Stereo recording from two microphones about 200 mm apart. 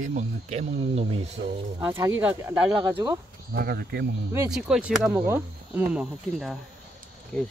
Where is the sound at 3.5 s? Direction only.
50° right (ahead or behind).